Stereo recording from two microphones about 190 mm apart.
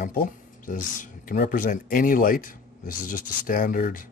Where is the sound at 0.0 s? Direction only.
50° left (ahead or behind).